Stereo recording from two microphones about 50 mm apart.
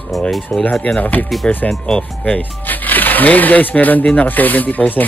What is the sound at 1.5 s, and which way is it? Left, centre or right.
Speech, centre.